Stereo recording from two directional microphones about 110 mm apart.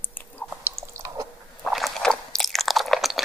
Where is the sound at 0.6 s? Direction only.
20° right (ahead or behind).